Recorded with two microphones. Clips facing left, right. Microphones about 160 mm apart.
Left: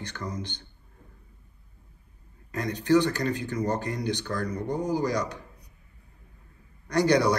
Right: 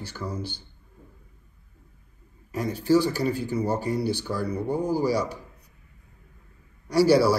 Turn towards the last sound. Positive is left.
turn(degrees=-5)  # may be behind; listen again after turning